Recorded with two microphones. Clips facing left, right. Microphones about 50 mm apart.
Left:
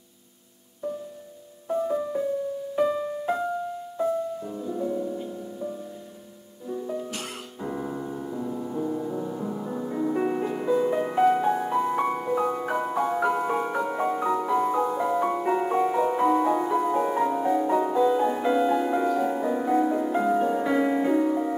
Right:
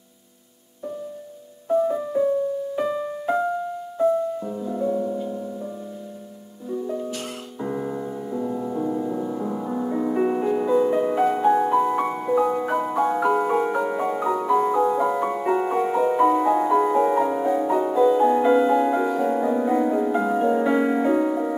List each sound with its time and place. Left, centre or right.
1.7 s music: centre
4.4 s music: centre
6.7 s music: centre
8.5 s music: centre